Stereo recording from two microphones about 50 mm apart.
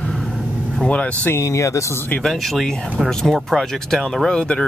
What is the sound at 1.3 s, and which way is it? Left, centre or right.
Speech, left.